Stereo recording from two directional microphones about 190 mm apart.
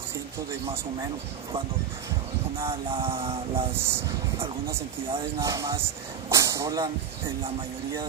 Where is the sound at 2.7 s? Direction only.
30° right (ahead or behind).